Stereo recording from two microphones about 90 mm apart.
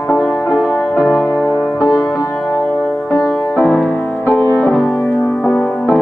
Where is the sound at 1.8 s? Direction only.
25° left (ahead or behind).